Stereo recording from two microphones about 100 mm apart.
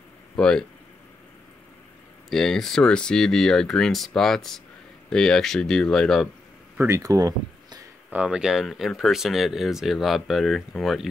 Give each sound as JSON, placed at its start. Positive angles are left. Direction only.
{"t": 0.4, "sound": "speech", "side_deg": 10}
{"t": 2.2, "sound": "speech", "side_deg": 5}
{"t": 6.8, "sound": "speech", "side_deg": -30}
{"t": 8.1, "sound": "speech", "side_deg": -10}